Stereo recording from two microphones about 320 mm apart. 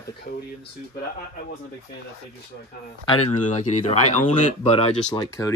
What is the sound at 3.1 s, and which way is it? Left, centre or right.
Speech, left.